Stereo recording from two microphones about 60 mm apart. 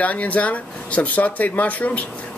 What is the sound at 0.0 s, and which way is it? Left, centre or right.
Speech, left.